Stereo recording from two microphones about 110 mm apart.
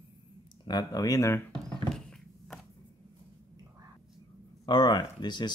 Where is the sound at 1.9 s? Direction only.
5° left (ahead or behind).